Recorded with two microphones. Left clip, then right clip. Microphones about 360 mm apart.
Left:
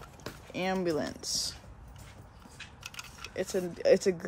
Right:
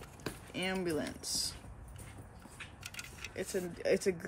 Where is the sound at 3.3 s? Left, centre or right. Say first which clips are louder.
Left 6 dB; centre.